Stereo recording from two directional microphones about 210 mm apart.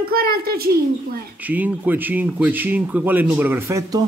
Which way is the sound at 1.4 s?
10° right (ahead or behind).